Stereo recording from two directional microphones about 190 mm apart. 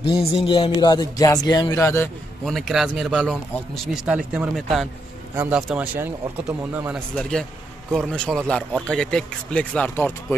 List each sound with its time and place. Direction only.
0.1 s speech: 25° left (ahead or behind)
2.4 s speech: centre (ahead or behind)
5.3 s speech: 15° right (ahead or behind)
6.9 s speech: 5° left (ahead or behind)